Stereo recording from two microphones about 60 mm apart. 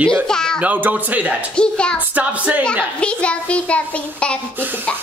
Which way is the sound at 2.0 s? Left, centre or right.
Right.